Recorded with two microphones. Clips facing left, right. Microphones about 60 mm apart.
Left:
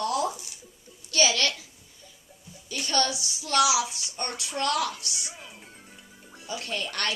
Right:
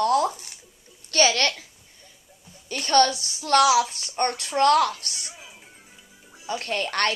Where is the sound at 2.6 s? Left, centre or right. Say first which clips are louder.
Right 8 dB; right.